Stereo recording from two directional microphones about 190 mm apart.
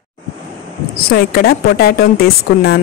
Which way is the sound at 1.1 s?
55° left (ahead or behind).